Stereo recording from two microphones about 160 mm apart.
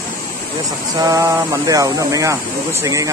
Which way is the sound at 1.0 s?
20° right (ahead or behind).